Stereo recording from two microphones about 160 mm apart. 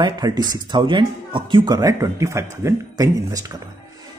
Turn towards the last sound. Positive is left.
turn(degrees=-20)  # may be behind; listen again after turning